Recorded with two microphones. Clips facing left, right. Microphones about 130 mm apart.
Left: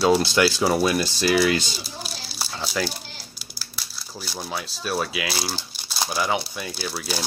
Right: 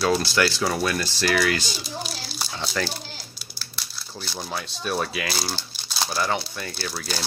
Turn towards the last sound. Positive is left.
turn(degrees=5)  # may be behind; listen again after turning